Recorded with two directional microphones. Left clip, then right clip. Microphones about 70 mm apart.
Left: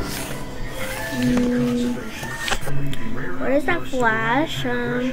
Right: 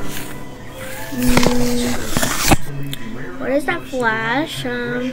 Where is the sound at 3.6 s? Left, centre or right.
Right.